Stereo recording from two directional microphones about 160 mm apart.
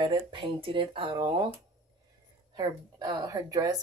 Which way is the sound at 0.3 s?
30° right (ahead or behind).